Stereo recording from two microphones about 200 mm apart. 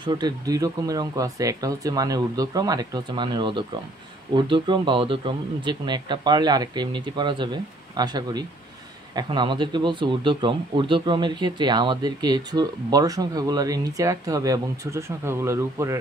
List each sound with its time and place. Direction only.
0.0 s speech: 20° right (ahead or behind)